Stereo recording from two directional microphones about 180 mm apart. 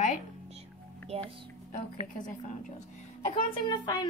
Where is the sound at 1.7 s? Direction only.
45° left (ahead or behind).